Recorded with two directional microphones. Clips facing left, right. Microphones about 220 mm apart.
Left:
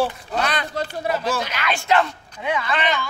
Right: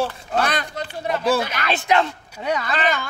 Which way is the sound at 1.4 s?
45° right (ahead or behind).